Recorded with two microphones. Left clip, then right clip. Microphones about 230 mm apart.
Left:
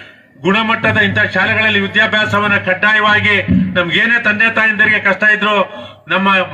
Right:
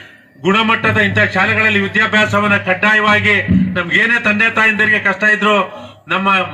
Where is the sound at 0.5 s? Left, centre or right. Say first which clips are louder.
Even; left.